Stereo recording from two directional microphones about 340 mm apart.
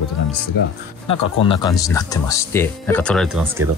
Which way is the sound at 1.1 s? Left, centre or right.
Centre.